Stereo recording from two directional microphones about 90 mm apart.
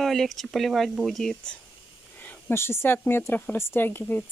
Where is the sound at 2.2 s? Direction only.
25° left (ahead or behind).